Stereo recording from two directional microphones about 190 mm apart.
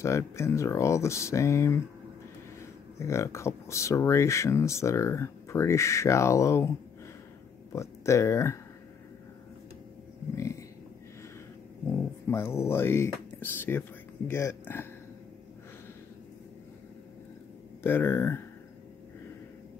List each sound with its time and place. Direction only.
0.0 s speech: 15° left (ahead or behind)
7.7 s speech: 15° left (ahead or behind)
10.3 s livestock: 15° left (ahead or behind)
12.3 s speech: 15° left (ahead or behind)
17.8 s speech: 10° left (ahead or behind)